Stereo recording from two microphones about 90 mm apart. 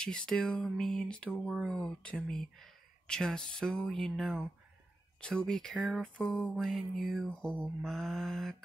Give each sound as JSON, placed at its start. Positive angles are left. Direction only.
{"t": 0.0, "sound": "speech", "side_deg": 10}